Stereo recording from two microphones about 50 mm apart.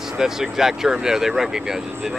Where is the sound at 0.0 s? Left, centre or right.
Centre.